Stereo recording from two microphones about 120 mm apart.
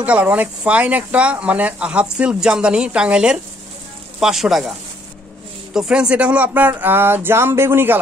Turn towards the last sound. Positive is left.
turn(degrees=-20)  # may be behind; listen again after turning